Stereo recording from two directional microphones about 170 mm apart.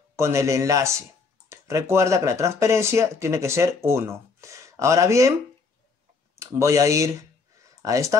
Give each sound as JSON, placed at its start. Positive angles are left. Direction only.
{"t": 0.1, "sound": "speech", "side_deg": -15}
{"t": 6.3, "sound": "speech", "side_deg": -15}